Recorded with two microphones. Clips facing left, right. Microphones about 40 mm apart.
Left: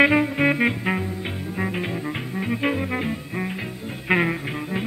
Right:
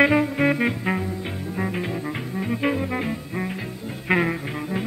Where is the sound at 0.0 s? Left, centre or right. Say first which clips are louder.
Left 1 dB; centre.